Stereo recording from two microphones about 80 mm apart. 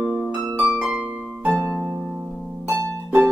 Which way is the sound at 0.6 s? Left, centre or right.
Centre.